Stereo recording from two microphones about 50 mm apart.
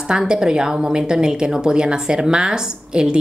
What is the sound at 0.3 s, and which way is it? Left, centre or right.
A woman's voice, centre.